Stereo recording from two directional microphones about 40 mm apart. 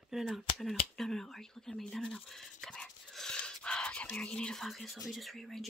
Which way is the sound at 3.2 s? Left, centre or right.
Left.